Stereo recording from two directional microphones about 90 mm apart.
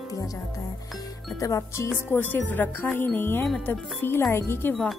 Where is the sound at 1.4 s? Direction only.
35° left (ahead or behind).